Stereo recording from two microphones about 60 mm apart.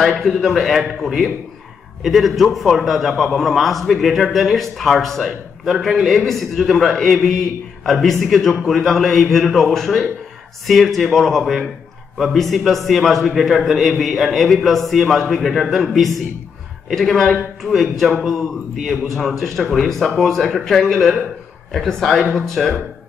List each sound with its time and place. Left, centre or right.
0.1 s a man's voice: centre